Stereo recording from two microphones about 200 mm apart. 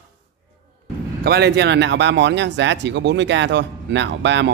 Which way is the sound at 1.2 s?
55° right (ahead or behind).